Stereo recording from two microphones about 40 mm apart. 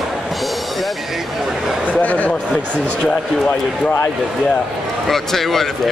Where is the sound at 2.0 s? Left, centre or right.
Left.